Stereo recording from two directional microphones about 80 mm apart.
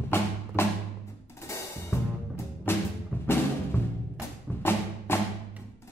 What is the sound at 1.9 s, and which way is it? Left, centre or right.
Music, left.